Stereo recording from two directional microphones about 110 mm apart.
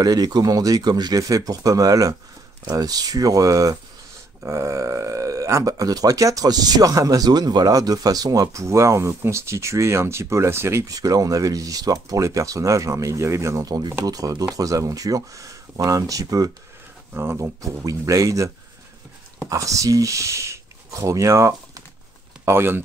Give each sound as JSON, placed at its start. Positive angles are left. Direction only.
{"t": 0.0, "sound": "speech", "side_deg": -35}
{"t": 19.5, "sound": "speech", "side_deg": -30}